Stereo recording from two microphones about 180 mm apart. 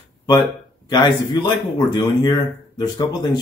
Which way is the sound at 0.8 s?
25° left (ahead or behind).